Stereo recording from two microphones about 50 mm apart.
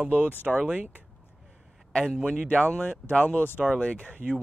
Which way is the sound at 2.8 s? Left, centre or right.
Left.